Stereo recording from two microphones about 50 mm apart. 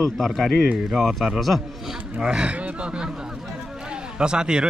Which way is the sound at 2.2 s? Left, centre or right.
Right.